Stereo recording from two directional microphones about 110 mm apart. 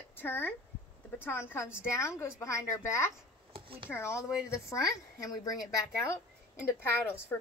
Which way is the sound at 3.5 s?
55° right (ahead or behind).